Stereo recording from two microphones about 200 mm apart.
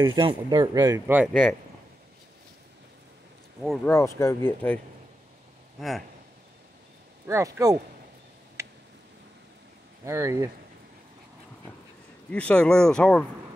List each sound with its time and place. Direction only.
0.0 s speech: 20° right (ahead or behind)
1.3 s speech: 5° left (ahead or behind)
3.6 s speech: centre (ahead or behind)
3.9 s speech: 15° left (ahead or behind)
7.2 s speech: 15° right (ahead or behind)
8.6 s a sound: 15° right (ahead or behind)
10.0 s speech: 15° right (ahead or behind)
12.3 s speech: 5° left (ahead or behind)